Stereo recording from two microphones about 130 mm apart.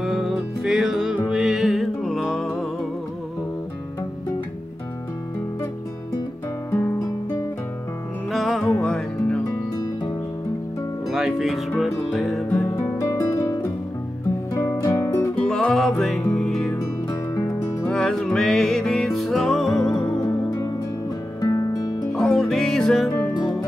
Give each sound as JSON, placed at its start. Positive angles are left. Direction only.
{"t": 0.0, "sound": "music", "side_deg": 0}
{"t": 6.7, "sound": "guitar", "side_deg": 15}
{"t": 8.3, "sound": "music", "side_deg": 0}
{"t": 11.1, "sound": "music", "side_deg": -5}
{"t": 12.9, "sound": "music", "side_deg": 20}
{"t": 15.3, "sound": "music", "side_deg": 5}
{"t": 17.3, "sound": "music", "side_deg": 20}
{"t": 17.8, "sound": "music", "side_deg": 5}
{"t": 21.4, "sound": "music", "side_deg": 30}
{"t": 22.1, "sound": "music", "side_deg": 5}